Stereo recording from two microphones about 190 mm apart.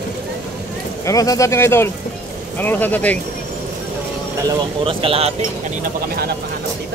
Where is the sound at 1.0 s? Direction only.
20° left (ahead or behind).